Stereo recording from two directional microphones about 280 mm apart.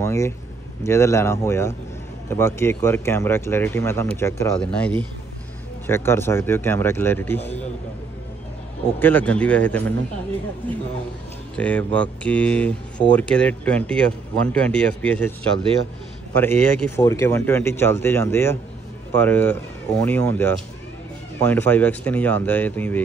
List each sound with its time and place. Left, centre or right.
0.0 s speech: centre
9.0 s speech: centre
16.3 s speech: centre